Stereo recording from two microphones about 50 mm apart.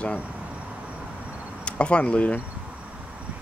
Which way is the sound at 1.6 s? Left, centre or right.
Left.